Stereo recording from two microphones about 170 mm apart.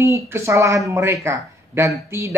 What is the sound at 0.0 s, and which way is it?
A woman's voice, 15° right (ahead or behind).